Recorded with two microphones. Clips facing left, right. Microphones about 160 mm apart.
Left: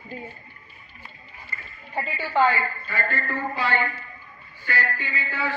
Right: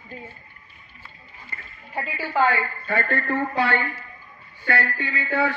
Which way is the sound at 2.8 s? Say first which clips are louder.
Right 4 dB; 55° right (ahead or behind).